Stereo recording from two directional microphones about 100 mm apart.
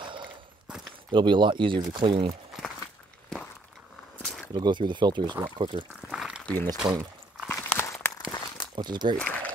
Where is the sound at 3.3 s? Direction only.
5° left (ahead or behind).